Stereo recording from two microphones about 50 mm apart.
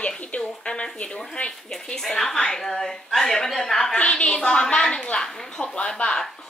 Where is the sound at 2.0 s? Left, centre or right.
Centre.